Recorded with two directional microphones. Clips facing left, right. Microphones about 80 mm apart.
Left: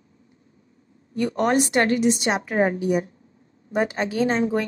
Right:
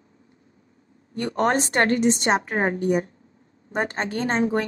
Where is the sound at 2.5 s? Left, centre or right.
Right.